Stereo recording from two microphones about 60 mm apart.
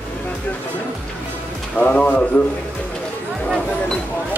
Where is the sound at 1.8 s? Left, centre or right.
Left.